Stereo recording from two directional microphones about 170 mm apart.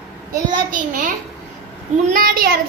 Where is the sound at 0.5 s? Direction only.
50° right (ahead or behind).